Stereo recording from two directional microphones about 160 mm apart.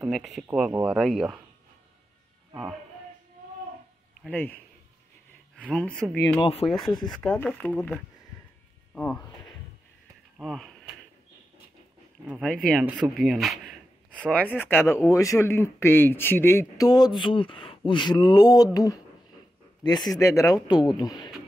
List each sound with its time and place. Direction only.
0.1 s speech: centre (ahead or behind)
2.5 s speech: 5° right (ahead or behind)
4.2 s speech: 10° left (ahead or behind)
5.7 s speech: 5° left (ahead or behind)
6.4 s speech: 35° left (ahead or behind)
7.1 s speech: centre (ahead or behind)
10.4 s speech: centre (ahead or behind)
13.2 s speech: centre (ahead or behind); by 21.3 s 25° left (ahead or behind)